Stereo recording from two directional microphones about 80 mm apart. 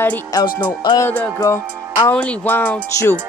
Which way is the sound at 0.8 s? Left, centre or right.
Left.